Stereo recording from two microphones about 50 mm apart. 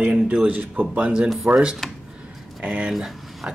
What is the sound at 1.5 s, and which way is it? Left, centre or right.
Speech, right.